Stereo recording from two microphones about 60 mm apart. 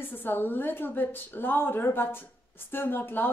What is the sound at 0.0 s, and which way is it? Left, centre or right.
A woman's voice, left.